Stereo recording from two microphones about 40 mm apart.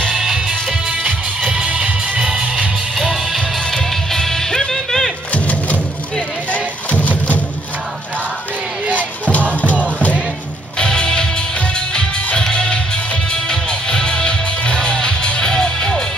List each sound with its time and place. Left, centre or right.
0.1 s music: centre; by 2.0 s right
2.1 s music: centre
3.0 s music: centre
3.3 s music: centre
5.3 s music: left
9.5 s music: left
9.8 s music: right
10.8 s music: left